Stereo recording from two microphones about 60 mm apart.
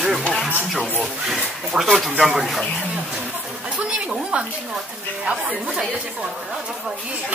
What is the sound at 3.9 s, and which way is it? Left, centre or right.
Speech, centre.